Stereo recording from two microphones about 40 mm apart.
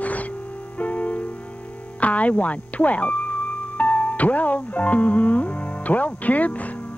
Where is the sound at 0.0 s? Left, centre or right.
Left.